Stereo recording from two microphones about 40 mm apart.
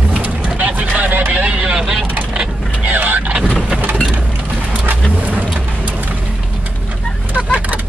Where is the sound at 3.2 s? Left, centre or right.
Right.